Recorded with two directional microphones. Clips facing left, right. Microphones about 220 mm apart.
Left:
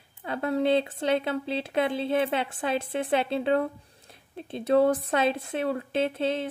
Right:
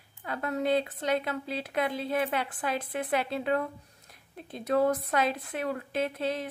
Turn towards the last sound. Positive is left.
turn(degrees=25)  # may be behind; listen again after turning